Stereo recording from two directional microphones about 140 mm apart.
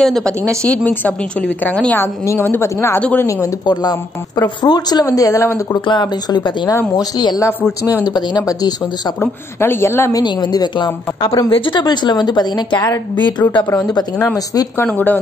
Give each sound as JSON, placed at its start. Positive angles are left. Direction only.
{"t": 0.0, "sound": "a woman's voice", "side_deg": 5}
{"t": 9.2, "sound": "a woman's voice", "side_deg": 15}
{"t": 10.2, "sound": "speech", "side_deg": 30}
{"t": 14.9, "sound": "a woman's voice", "side_deg": 10}